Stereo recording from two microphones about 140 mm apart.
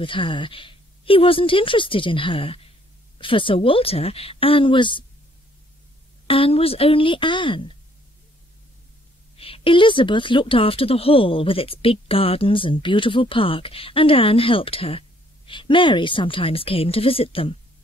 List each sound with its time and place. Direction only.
0.0 s speech: 35° left (ahead or behind)
6.2 s speech: 40° left (ahead or behind)
9.4 s speech: 40° left (ahead or behind)